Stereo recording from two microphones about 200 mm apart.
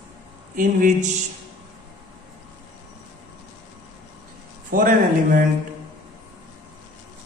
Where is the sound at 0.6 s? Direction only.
45° right (ahead or behind).